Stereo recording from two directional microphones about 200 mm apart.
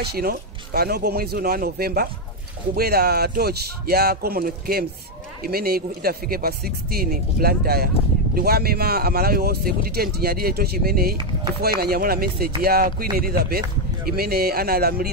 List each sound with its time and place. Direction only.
0.0 s speech: 50° right (ahead or behind)